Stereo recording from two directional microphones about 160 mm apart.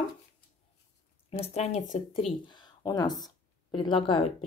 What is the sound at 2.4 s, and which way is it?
Speech, 25° left (ahead or behind).